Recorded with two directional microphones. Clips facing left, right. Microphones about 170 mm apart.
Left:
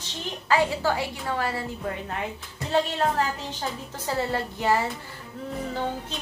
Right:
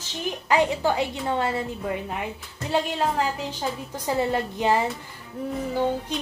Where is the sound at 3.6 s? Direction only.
15° right (ahead or behind).